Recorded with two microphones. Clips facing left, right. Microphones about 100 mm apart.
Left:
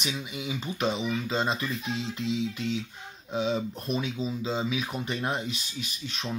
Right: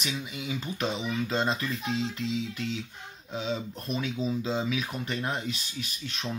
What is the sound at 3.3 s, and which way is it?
Speech, 15° left (ahead or behind).